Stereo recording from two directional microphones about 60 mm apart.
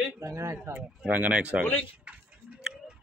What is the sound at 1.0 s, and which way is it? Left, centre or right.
Speech, right.